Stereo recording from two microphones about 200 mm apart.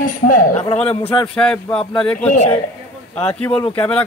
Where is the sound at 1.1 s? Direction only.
5° left (ahead or behind).